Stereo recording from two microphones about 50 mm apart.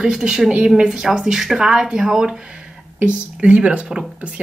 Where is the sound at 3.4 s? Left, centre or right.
Right.